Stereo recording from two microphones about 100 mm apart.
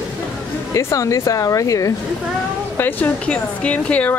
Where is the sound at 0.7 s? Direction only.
30° left (ahead or behind).